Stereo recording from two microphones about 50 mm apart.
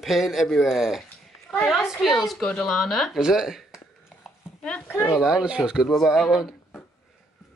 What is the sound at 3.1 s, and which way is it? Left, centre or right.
Speech, centre.